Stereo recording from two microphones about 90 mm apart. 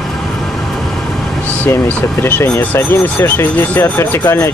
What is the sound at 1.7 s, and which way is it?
Speech, 20° left (ahead or behind).